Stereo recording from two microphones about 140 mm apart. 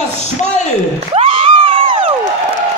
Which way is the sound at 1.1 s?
40° right (ahead or behind).